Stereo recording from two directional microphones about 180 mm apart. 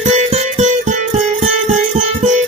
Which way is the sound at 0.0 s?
35° right (ahead or behind).